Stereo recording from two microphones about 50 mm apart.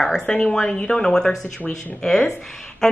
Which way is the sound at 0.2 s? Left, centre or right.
Centre.